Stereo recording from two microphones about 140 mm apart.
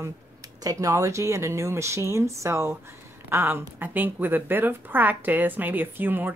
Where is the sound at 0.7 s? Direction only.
25° right (ahead or behind).